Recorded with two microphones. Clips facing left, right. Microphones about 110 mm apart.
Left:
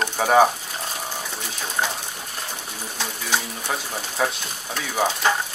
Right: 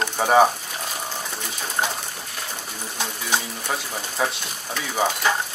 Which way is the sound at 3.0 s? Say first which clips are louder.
Even; 10° right (ahead or behind).